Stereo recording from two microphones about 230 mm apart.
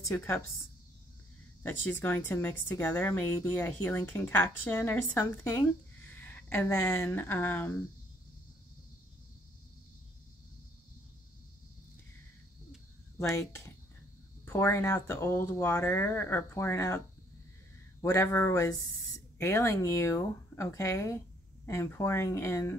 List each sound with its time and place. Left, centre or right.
0.0 s a woman's voice: centre
1.6 s a woman's voice: centre
14.4 s a woman's voice: centre
18.0 s a woman's voice: centre